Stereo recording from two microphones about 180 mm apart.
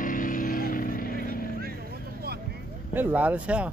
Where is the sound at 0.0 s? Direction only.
50° left (ahead or behind).